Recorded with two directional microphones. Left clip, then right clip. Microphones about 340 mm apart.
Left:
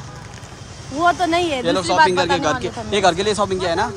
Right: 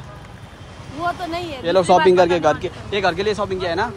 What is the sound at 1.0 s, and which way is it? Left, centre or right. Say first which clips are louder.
Speech: left 7 dB; left.